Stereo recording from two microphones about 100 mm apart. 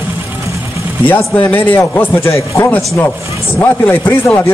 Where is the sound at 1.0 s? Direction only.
15° left (ahead or behind).